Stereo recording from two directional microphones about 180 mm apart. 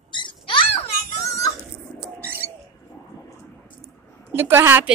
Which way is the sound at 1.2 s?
15° left (ahead or behind).